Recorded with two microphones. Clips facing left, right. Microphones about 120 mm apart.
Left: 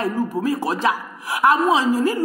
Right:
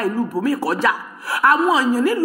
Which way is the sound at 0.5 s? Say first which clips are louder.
Right 1 dB; 20° left (ahead or behind).